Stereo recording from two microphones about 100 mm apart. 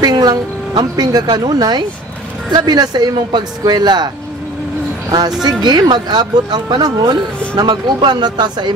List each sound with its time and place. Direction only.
0.0 s speech: 40° right (ahead or behind)
5.1 s speech: 40° right (ahead or behind)